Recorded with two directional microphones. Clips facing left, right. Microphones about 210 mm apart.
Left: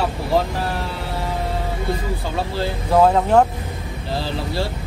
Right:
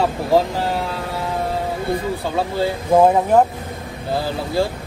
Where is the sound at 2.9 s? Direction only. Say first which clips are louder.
Right 1 dB; 15° right (ahead or behind).